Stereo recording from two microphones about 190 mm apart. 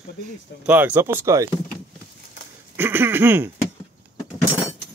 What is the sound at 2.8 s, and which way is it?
Speech, 10° right (ahead or behind).